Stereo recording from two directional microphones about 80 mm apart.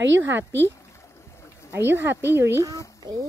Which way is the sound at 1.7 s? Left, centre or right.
Right.